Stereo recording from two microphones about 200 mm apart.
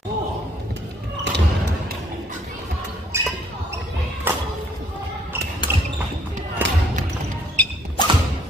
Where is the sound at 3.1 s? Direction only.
15° right (ahead or behind).